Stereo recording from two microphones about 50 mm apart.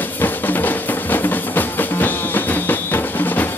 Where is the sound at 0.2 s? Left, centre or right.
Left.